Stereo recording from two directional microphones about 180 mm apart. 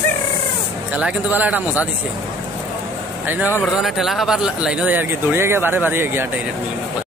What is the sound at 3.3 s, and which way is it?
Speech, 10° right (ahead or behind).